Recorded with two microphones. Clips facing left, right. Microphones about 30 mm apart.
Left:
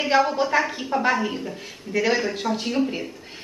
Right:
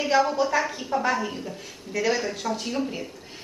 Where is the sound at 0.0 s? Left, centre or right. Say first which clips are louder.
Left 2 dB; left.